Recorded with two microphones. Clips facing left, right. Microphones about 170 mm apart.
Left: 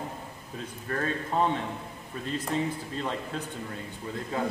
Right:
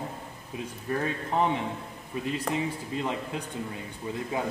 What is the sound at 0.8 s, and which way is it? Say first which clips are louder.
Speech: right 1 dB; 15° right (ahead or behind).